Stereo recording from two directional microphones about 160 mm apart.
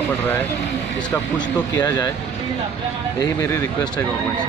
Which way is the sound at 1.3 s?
25° left (ahead or behind).